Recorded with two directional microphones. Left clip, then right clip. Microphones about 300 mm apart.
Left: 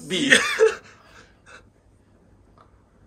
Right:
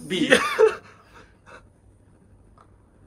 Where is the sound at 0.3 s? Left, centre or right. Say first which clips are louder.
Left 1 dB; centre.